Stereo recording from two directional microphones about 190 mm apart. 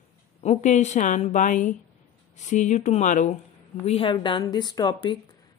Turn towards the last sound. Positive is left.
turn(degrees=25)  # may be behind; listen again after turning